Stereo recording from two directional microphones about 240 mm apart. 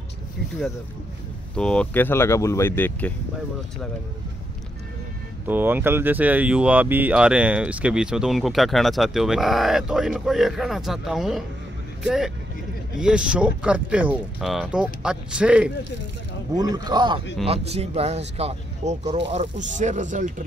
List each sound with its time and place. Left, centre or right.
1.5 s speech: centre
5.5 s speech: centre
16.5 s speech: centre; by 20.4 s right